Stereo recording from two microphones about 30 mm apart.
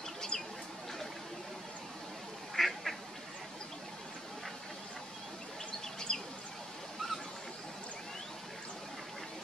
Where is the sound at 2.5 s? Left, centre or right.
Centre.